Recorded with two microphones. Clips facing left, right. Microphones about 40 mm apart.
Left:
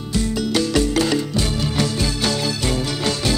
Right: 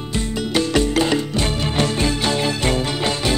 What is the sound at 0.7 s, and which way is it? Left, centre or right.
Music, right.